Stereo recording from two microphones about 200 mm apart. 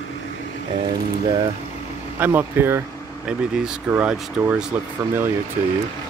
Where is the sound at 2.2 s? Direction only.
10° right (ahead or behind).